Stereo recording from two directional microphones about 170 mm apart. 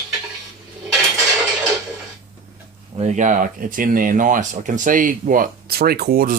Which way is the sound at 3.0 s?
45° right (ahead or behind).